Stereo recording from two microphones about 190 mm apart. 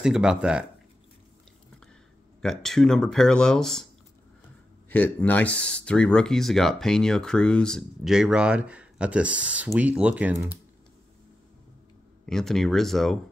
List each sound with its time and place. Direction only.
0.0 s speech: 5° right (ahead or behind)
2.6 s speech: 5° left (ahead or behind)
4.8 s speech: 10° left (ahead or behind); by 10.3 s 5° right (ahead or behind)
12.3 s speech: centre (ahead or behind)